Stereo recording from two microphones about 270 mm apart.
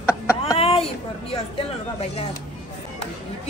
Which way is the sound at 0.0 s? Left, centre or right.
Centre.